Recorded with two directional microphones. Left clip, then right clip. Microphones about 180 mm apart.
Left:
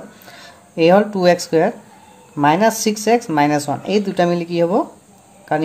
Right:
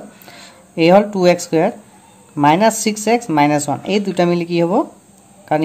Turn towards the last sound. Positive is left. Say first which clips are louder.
# right 2 dB
turn(degrees=-25)  # may be behind; listen again after turning